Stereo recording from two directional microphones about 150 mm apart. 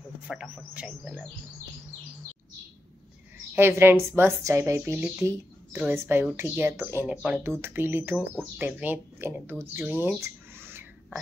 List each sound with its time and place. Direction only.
0.3 s speech: 5° right (ahead or behind)
3.5 s a woman's voice: 15° right (ahead or behind)